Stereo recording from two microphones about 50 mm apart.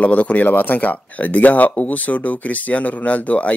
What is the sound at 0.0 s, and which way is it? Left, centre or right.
A man's voice, left.